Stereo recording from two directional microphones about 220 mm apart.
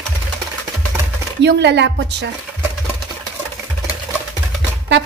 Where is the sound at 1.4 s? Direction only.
50° right (ahead or behind).